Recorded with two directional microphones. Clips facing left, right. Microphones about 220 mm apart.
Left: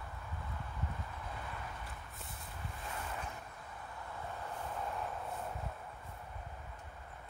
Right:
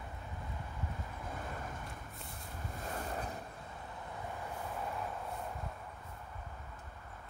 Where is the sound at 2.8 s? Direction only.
40° right (ahead or behind).